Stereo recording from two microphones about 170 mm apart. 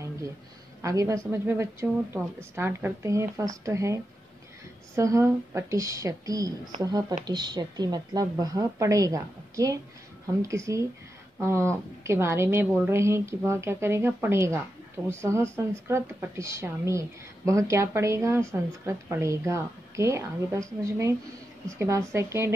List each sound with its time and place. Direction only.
0.8 s a woman's voice: 20° right (ahead or behind)